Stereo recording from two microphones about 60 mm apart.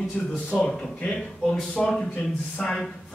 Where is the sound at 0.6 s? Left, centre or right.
Centre.